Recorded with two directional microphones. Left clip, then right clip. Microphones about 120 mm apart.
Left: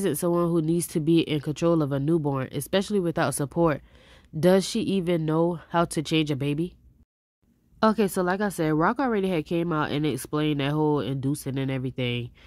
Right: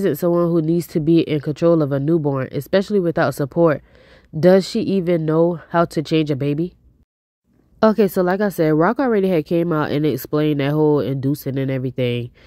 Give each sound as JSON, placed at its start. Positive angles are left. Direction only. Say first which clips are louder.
{"t": 0.0, "sound": "speech", "louder": "right 7 dB", "side_deg": -30}
{"t": 7.8, "sound": "a woman's voice", "louder": "right 7 dB", "side_deg": -45}